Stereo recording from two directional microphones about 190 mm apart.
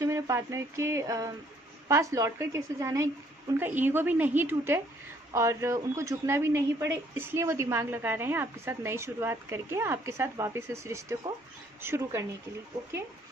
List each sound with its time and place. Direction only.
0.0 s speech: 15° right (ahead or behind)